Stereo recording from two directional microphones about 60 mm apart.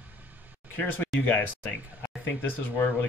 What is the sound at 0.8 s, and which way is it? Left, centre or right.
Speech, left.